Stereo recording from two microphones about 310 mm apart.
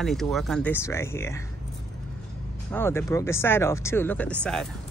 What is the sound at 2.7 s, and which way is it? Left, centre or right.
Speech, centre.